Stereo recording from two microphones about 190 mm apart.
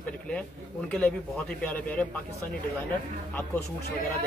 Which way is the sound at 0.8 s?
5° left (ahead or behind).